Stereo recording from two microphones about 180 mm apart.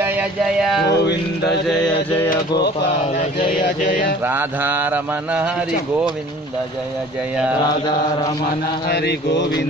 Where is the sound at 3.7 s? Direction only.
50° left (ahead or behind).